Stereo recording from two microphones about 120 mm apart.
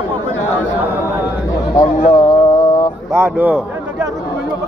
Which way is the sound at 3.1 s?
20° right (ahead or behind).